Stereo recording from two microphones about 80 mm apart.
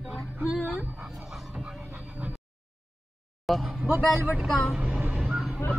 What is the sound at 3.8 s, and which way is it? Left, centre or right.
Speech, right.